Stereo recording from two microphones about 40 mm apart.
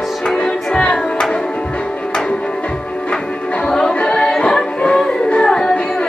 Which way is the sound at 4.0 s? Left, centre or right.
Left.